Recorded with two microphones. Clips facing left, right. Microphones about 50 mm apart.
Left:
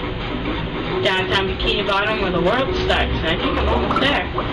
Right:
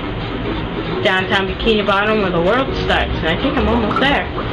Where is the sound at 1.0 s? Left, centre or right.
Centre.